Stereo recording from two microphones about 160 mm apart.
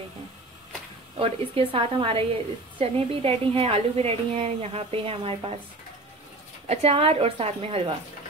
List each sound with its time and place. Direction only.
1.1 s speech: 35° right (ahead or behind)
6.7 s speech: 40° right (ahead or behind)